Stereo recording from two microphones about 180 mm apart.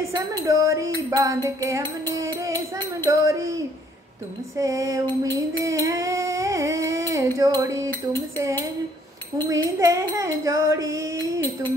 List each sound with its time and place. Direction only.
0.1 s female singing: 20° right (ahead or behind)
1.1 s music: 20° right (ahead or behind)
3.1 s female singing: 15° right (ahead or behind)
4.6 s female singing: 15° right (ahead or behind)
5.6 s child singing: 20° right (ahead or behind)
9.5 s female singing: 15° right (ahead or behind)